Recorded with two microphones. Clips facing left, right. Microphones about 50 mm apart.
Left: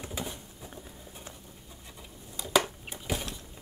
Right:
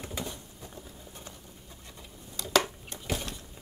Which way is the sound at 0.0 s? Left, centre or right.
Centre.